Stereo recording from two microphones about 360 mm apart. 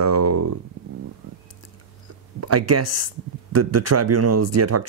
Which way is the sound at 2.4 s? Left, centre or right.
Right.